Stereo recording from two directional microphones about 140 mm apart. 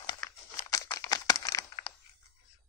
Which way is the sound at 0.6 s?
25° left (ahead or behind).